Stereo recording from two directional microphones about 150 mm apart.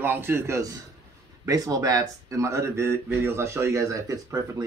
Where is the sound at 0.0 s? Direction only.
15° right (ahead or behind).